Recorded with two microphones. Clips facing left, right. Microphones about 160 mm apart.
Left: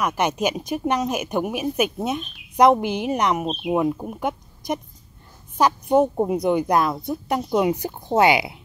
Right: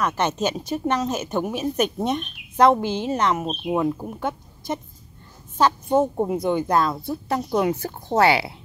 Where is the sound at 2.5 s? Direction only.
15° left (ahead or behind).